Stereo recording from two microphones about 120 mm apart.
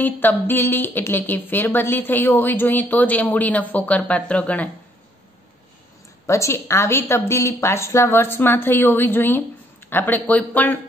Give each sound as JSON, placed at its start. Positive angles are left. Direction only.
{"t": 0.0, "sound": "a woman's voice", "side_deg": 15}
{"t": 6.2, "sound": "a woman's voice", "side_deg": 25}